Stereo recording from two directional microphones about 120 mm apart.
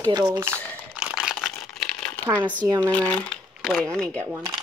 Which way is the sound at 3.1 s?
10° left (ahead or behind).